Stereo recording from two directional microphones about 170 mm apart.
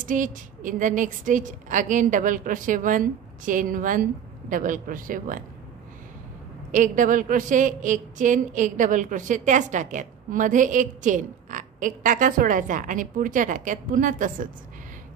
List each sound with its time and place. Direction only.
0.0 s a woman's voice: 50° right (ahead or behind)
6.7 s a woman's voice: 50° right (ahead or behind)